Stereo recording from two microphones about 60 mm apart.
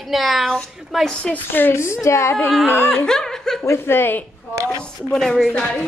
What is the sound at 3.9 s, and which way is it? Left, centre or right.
Speech, left.